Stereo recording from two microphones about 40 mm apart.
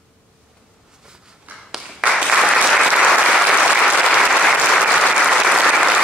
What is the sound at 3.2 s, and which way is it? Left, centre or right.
Applause, centre.